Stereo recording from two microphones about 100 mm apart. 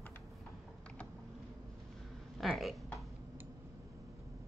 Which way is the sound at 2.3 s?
Centre (ahead or behind).